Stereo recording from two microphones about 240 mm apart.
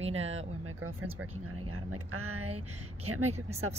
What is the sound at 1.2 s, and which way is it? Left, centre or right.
Speech, right.